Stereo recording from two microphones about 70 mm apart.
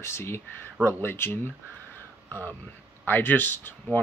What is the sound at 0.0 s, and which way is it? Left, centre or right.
Speech, left.